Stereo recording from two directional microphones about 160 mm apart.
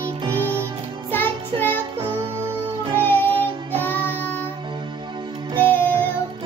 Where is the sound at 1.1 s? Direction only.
10° left (ahead or behind).